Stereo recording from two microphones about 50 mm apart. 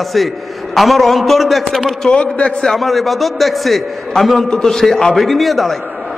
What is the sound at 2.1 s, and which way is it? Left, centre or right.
Speech, left.